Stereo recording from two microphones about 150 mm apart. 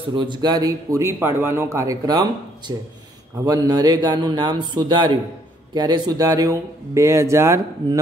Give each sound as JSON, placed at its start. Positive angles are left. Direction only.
{"t": 0.1, "sound": "a man's voice", "side_deg": -30}